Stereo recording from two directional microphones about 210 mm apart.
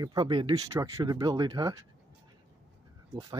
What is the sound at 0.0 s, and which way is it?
Speech, 20° right (ahead or behind).